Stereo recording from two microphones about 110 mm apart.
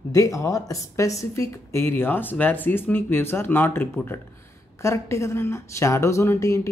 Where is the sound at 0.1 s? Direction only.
30° left (ahead or behind).